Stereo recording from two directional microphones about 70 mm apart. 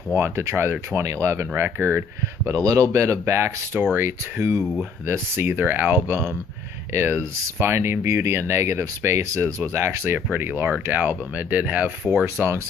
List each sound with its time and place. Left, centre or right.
0.1 s speech: right
2.6 s speech: right
12.0 s speech: centre
12.4 s speech: right